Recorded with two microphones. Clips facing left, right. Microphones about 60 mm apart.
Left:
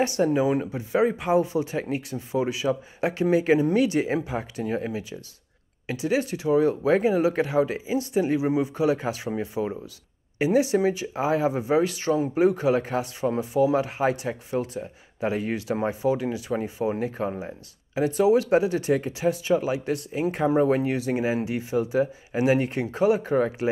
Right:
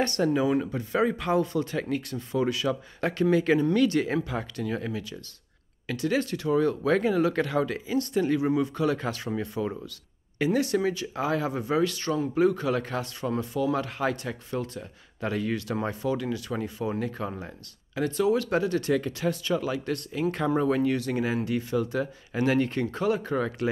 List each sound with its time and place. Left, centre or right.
0.2 s speech: left
17.3 s speech: centre